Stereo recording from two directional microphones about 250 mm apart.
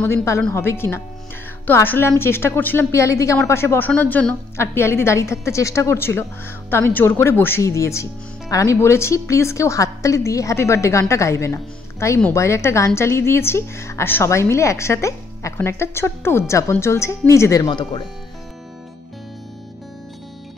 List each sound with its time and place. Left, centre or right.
0.0 s a woman's voice: centre